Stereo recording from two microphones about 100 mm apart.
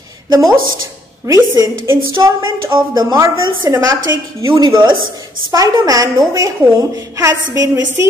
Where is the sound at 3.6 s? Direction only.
30° right (ahead or behind).